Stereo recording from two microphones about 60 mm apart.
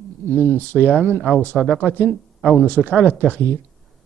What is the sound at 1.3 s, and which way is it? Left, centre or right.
Speech, right.